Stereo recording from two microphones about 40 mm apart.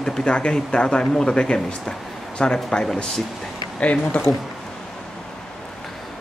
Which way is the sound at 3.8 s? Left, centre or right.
Left.